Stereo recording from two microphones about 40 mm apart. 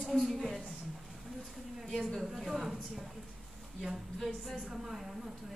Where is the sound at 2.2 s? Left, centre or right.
Centre.